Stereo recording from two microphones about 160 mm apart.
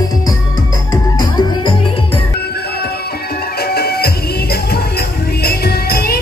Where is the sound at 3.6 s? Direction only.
80° left.